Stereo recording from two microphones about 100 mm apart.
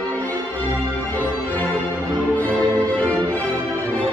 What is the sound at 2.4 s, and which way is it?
Music, 15° left (ahead or behind).